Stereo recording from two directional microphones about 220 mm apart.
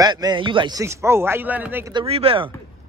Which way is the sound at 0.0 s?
20° right (ahead or behind).